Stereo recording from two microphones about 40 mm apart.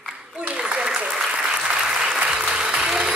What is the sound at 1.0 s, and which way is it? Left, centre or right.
Applause, centre.